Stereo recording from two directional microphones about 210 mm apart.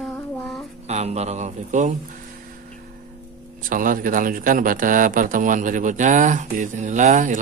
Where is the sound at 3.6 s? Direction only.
40° right (ahead or behind).